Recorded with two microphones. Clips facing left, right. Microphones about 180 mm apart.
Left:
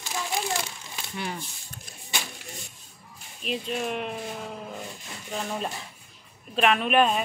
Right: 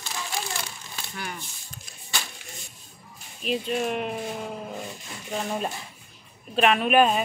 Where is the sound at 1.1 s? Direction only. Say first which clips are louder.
Left 3 dB; 30° left (ahead or behind).